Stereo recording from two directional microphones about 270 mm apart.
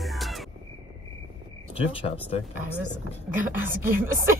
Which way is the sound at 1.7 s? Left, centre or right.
Left.